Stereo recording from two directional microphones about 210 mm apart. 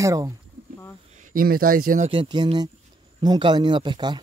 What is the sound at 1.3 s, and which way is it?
Speech, 40° right (ahead or behind).